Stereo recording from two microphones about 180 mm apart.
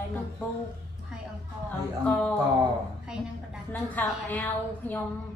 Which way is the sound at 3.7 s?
10° left (ahead or behind).